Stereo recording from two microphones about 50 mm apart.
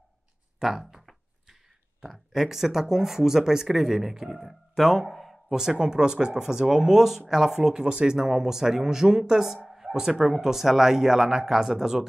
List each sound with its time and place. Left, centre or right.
0.6 s speech: centre
2.0 s speech: centre